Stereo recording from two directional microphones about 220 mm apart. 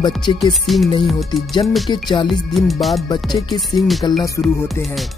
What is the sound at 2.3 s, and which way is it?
Speech, centre (ahead or behind).